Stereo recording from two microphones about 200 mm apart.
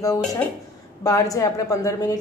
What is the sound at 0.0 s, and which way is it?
A woman's voice, 20° left (ahead or behind).